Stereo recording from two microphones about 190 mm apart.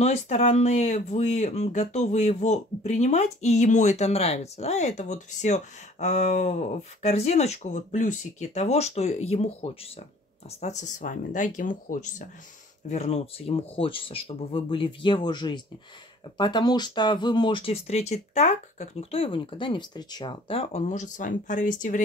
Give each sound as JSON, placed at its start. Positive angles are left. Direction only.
{"t": 0.0, "sound": "speech", "side_deg": 35}